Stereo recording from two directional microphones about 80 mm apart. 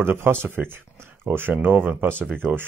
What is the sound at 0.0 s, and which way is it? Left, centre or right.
Speech, right.